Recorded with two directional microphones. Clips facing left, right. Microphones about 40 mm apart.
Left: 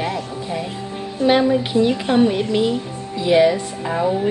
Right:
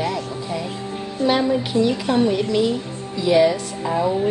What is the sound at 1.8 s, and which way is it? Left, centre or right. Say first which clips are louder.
Speech: left 2 dB; left.